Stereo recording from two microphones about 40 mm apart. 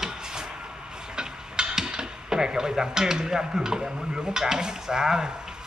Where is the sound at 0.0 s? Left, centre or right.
Centre.